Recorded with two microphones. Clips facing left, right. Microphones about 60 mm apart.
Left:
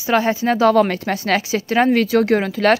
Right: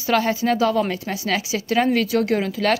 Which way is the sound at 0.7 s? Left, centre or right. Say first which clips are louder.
Left 6 dB; left.